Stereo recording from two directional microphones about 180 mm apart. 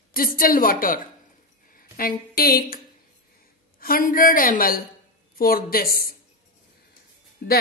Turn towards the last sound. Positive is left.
turn(degrees=60)  # may be behind; listen again after turning